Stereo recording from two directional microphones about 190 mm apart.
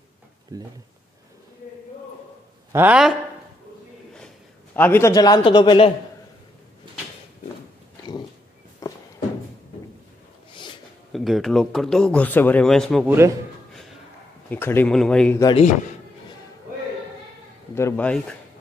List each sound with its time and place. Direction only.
0.5 s speech: 20° right (ahead or behind)
2.7 s a man's voice: 10° right (ahead or behind)
4.7 s a man's voice: 10° left (ahead or behind)
8.8 s a sound: 15° left (ahead or behind)
11.1 s speech: centre (ahead or behind)
14.5 s speech: 10° left (ahead or behind)
17.7 s speech: 10° left (ahead or behind)